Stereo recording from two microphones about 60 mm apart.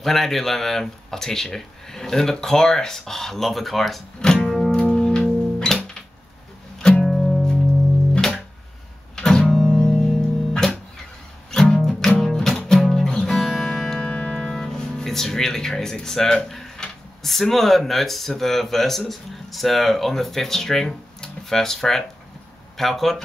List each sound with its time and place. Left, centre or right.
0.0 s speech: centre
4.4 s music: centre
6.8 s music: centre
9.1 s music: centre
13.9 s music: centre
14.6 s speech: centre